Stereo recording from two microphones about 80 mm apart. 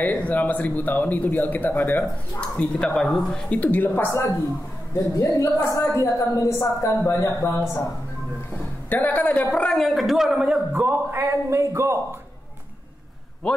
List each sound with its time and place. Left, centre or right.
0.0 s speech: centre
2.5 s speech: centre
3.5 s speech: centre
4.9 s a woman's voice: left
8.9 s speech: left
9.8 s a man's voice: centre
10.7 s speech: right
11.1 s a man's voice: right